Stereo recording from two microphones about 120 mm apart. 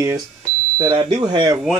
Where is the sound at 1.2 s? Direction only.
35° right (ahead or behind).